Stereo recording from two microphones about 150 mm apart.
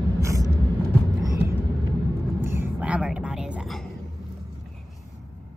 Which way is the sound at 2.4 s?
15° right (ahead or behind).